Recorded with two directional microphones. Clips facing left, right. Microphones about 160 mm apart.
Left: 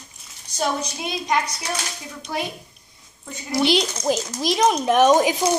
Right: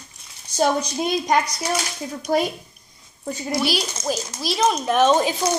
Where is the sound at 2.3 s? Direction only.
40° right (ahead or behind).